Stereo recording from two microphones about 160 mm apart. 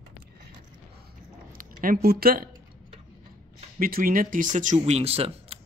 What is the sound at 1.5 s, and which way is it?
Speech, 60° right (ahead or behind).